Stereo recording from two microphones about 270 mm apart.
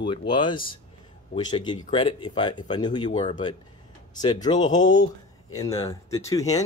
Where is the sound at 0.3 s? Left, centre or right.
Centre.